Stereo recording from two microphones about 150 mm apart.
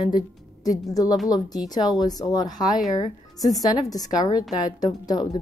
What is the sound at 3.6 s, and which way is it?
Speech, 25° left (ahead or behind).